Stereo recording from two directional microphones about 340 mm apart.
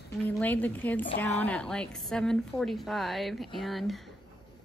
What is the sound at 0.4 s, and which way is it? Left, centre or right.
A woman's voice, centre.